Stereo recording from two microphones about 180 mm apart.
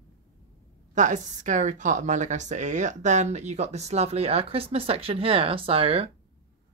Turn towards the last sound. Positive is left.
turn(degrees=-30)  # may be behind; listen again after turning